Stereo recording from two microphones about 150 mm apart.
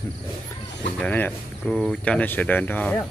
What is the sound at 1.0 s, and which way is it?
Speech, 10° left (ahead or behind).